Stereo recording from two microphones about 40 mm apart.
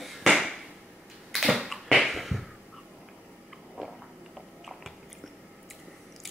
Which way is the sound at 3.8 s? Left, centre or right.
Right.